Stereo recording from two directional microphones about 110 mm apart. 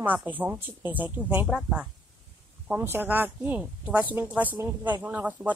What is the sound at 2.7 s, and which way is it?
A woman's voice, 15° right (ahead or behind).